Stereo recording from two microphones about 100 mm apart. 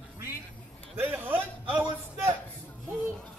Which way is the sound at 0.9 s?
20° right (ahead or behind).